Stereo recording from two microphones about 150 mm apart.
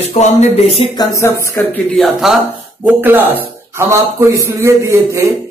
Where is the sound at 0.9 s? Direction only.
25° left (ahead or behind).